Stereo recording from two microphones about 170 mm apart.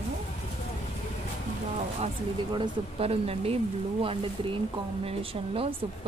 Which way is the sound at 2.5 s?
30° right (ahead or behind).